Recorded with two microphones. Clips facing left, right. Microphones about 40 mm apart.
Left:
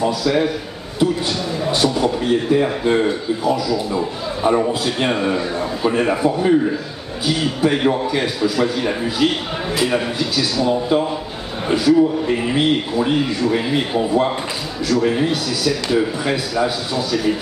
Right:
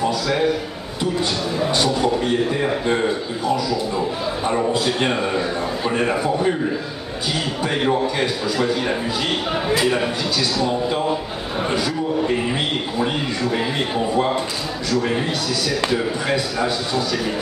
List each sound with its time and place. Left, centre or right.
0.0 s a man's voice: centre